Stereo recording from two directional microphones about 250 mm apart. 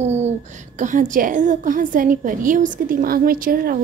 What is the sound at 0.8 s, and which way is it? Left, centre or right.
A woman's voice, right.